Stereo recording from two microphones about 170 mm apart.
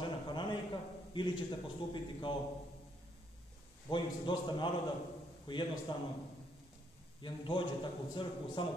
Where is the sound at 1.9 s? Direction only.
30° left (ahead or behind).